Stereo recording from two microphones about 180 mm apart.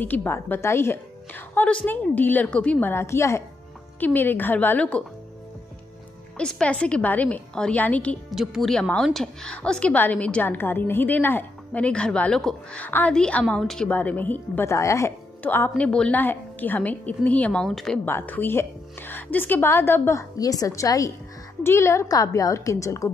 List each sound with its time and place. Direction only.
0.0 s a woman's voice: 10° left (ahead or behind)
6.3 s a woman's voice: 5° left (ahead or behind)